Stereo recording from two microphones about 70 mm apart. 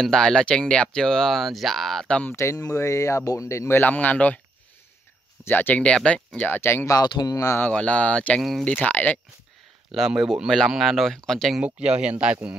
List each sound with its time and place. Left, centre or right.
0.0 s speech: centre
2.3 s speech: left
5.4 s speech: left
5.8 s speech: centre
6.6 s speech: left
6.9 s speech: left
7.7 s speech: centre
8.4 s speech: centre
8.6 s speech: left
9.9 s speech: centre
11.6 s speech: centre